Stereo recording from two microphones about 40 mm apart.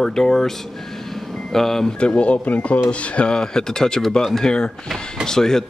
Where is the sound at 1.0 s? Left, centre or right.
Centre.